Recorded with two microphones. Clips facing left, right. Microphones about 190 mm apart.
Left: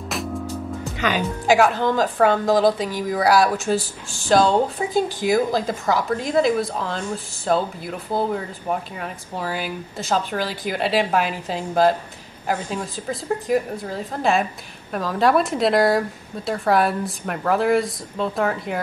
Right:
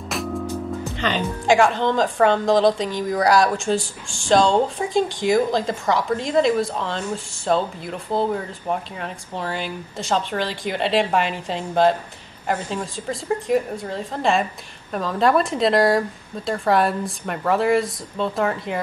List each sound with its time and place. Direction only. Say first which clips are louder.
0.1 s music: right 1 dB; centre (ahead or behind)
0.9 s speech: left 2 dB; 10° left (ahead or behind)